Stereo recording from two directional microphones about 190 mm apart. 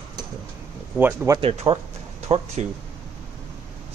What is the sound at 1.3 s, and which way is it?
Speech, 25° right (ahead or behind).